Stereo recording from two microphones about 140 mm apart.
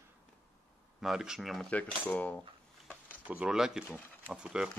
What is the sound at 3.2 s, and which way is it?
Speech, 10° right (ahead or behind).